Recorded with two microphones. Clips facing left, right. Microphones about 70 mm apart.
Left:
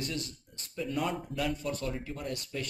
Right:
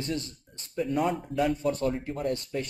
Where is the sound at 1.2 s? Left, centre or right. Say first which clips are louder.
Right 7 dB; right.